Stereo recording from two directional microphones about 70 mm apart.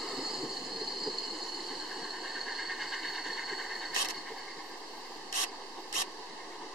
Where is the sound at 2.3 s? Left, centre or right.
Centre.